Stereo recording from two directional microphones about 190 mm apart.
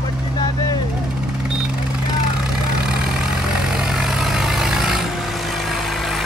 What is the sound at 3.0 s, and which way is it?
Vehicle, 5° right (ahead or behind).